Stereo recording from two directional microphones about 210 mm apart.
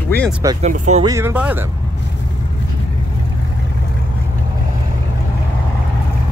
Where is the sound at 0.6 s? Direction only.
35° right (ahead or behind).